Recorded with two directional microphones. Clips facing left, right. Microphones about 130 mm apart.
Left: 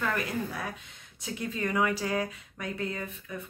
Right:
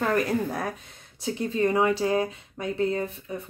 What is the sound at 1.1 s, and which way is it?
Speech, 30° right (ahead or behind).